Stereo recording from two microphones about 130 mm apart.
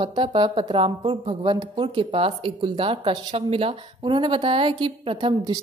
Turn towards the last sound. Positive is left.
turn(degrees=-40)  # may be behind; listen again after turning